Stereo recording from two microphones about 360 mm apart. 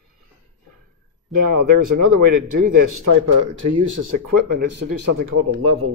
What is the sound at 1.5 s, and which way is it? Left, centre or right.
Speech, right.